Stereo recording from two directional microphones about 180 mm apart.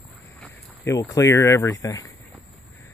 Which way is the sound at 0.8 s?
15° left (ahead or behind).